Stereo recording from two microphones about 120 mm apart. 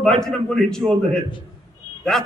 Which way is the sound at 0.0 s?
5° left (ahead or behind).